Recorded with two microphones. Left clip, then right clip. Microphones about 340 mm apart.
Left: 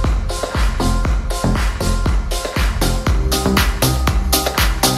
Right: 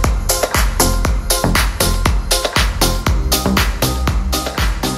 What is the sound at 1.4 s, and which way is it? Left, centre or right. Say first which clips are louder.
Music: right 4 dB; right.